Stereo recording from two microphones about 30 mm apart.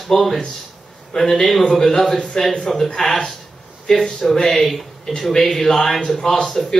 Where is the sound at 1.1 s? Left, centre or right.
Centre.